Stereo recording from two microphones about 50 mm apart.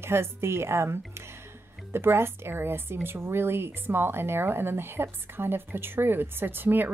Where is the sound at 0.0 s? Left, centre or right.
Right.